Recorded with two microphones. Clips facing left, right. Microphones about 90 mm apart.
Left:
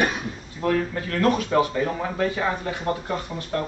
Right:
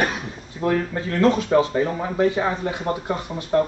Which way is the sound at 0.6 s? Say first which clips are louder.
Right 1 dB; 30° right (ahead or behind).